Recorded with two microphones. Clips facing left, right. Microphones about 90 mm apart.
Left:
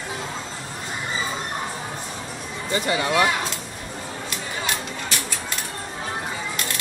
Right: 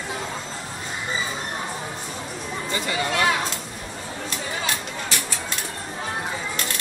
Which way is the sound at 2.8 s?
20° left (ahead or behind).